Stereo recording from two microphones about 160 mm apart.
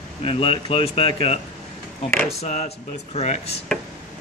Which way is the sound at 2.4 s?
45° left (ahead or behind).